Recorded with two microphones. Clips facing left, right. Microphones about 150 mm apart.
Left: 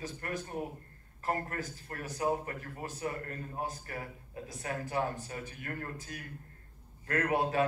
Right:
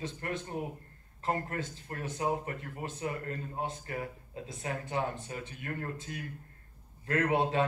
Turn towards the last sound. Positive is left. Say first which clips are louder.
# right 2 dB
turn(degrees=-25)  # may be behind; listen again after turning